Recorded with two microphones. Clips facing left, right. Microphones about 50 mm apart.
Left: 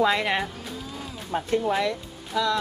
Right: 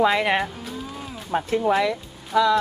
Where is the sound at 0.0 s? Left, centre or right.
Centre.